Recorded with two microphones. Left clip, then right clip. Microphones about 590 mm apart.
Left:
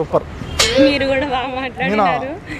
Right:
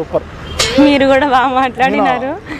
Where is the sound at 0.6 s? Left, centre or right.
Centre.